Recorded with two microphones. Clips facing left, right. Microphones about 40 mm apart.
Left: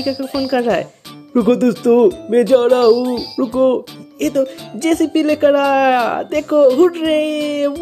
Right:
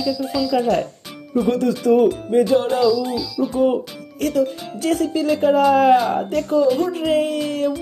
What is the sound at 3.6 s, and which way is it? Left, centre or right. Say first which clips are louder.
Speech: left 5 dB; left.